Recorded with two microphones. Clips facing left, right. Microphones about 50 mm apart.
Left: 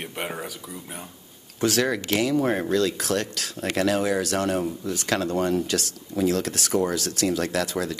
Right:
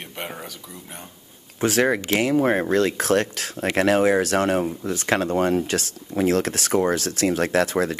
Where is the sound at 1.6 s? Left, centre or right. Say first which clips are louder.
Right 3 dB; right.